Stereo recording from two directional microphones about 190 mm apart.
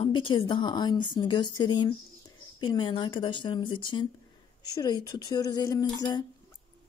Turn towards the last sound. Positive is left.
turn(degrees=20)  # may be behind; listen again after turning